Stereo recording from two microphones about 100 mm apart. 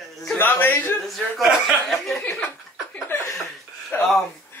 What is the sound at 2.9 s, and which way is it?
Chuckle, 25° left (ahead or behind).